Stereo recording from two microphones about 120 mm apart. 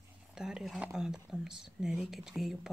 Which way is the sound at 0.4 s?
5° right (ahead or behind).